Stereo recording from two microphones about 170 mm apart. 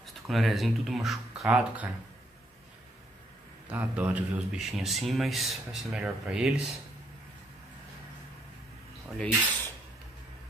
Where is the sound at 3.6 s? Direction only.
10° right (ahead or behind).